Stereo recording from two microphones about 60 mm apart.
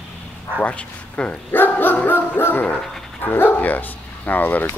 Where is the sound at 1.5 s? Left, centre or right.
Left.